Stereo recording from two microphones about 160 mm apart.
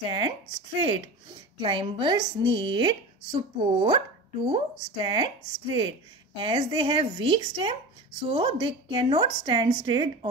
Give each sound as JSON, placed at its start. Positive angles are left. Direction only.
{"t": 0.0, "sound": "speech", "side_deg": -30}